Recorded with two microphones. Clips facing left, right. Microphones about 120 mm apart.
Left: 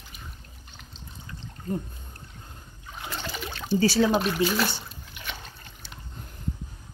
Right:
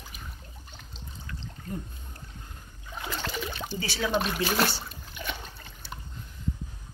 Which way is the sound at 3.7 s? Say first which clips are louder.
Left 10 dB; 35° left (ahead or behind).